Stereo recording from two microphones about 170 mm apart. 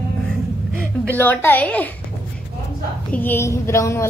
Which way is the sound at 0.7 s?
10° right (ahead or behind).